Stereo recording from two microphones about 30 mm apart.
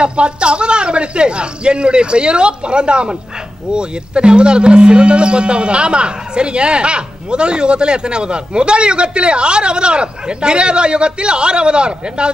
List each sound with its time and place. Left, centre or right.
0.0 s speech: right